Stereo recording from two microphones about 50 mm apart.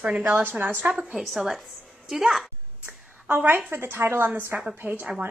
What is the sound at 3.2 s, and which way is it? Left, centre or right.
Speech, right.